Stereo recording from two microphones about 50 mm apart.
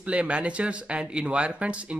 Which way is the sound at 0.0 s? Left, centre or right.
Right.